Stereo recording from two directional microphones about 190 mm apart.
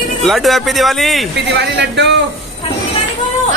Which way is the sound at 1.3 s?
65° right (ahead or behind).